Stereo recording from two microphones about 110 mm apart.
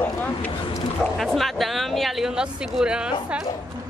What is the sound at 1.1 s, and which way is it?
Speech, centre (ahead or behind).